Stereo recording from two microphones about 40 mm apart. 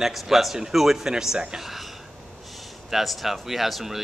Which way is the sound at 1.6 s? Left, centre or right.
Centre.